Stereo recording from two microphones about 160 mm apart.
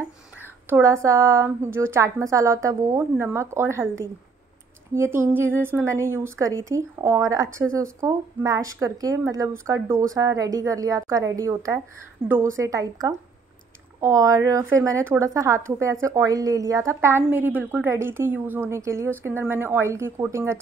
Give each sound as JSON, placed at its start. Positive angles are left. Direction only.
{"t": 0.7, "sound": "a woman's voice", "side_deg": -15}
{"t": 4.9, "sound": "a woman's voice", "side_deg": -15}